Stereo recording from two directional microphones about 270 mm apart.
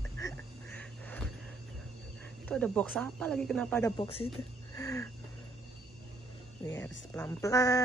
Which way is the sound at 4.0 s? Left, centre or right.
Left.